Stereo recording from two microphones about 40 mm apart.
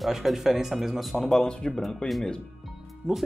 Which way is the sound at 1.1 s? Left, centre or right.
Centre.